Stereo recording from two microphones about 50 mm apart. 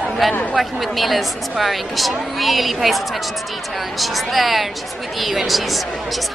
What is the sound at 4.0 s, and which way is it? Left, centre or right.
A woman's voice, centre.